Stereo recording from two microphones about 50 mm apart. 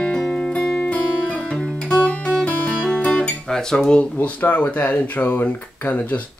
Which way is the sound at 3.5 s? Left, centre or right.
Centre.